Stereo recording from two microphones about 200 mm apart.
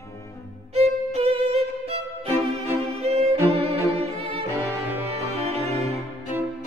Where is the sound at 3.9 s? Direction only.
30° right (ahead or behind).